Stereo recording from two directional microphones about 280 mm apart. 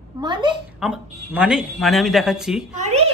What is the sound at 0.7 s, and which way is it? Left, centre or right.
Speech, centre.